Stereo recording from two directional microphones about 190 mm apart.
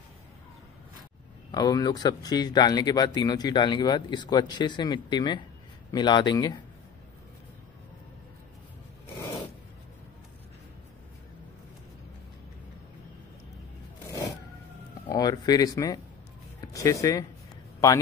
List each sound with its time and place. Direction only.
1.5 s speech: 20° left (ahead or behind)
15.0 s speech: 20° left (ahead or behind)